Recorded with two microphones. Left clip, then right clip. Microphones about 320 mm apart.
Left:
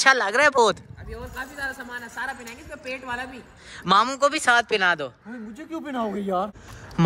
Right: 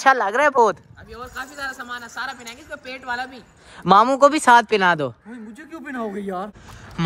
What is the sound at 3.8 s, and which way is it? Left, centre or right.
Speech, centre.